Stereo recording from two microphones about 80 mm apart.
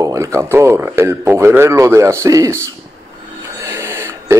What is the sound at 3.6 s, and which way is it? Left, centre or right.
Printer, right.